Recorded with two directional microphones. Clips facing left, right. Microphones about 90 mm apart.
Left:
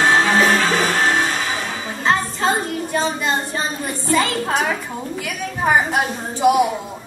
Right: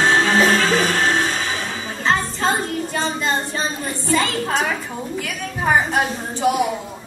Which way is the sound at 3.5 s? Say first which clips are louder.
Left 1 dB; 20° left (ahead or behind).